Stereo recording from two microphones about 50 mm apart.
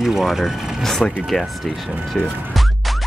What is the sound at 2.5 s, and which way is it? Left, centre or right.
Music, centre.